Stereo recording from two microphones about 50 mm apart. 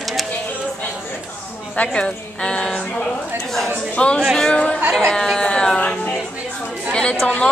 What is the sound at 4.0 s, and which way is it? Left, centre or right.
Speech, left.